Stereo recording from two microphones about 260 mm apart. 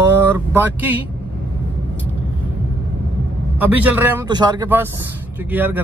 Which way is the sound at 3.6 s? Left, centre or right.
Centre.